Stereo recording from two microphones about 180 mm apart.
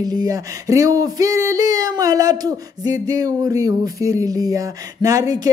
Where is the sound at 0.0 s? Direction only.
20° right (ahead or behind).